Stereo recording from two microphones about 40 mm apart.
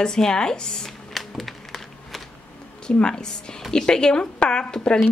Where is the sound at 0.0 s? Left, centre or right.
Centre.